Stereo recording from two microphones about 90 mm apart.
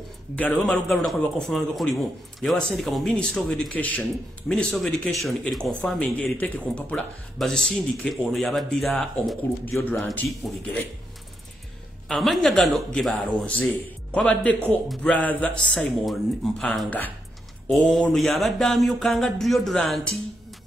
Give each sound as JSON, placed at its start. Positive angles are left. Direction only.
{"t": 0.4, "sound": "speech", "side_deg": 15}
{"t": 1.0, "sound": "speech", "side_deg": 5}
{"t": 4.7, "sound": "speech", "side_deg": 0}
{"t": 9.7, "sound": "a man's voice", "side_deg": 20}
{"t": 10.2, "sound": "speech", "side_deg": 0}
{"t": 12.1, "sound": "speech", "side_deg": 5}
{"t": 13.5, "sound": "speech", "side_deg": 15}